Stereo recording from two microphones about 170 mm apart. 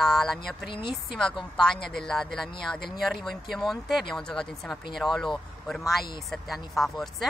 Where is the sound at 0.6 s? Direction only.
30° left (ahead or behind).